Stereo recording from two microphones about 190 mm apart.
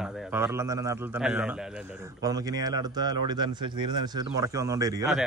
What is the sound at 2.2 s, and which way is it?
A man's voice, 20° right (ahead or behind).